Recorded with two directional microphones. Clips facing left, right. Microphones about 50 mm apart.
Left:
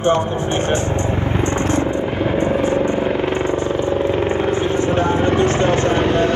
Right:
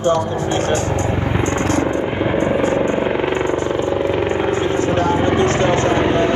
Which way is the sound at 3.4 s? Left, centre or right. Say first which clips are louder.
Even; right.